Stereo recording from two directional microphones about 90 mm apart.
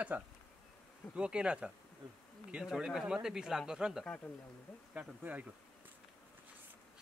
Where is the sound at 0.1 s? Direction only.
20° right (ahead or behind).